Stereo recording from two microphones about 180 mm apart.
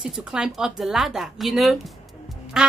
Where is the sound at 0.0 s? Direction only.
5° right (ahead or behind).